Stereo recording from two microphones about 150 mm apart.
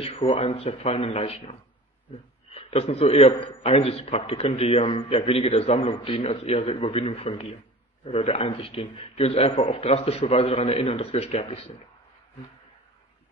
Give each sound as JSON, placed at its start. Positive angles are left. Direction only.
{"t": 0.0, "sound": "a man's voice", "side_deg": 40}